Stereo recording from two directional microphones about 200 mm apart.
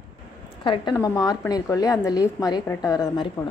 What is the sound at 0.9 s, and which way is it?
A woman's voice, 15° left (ahead or behind).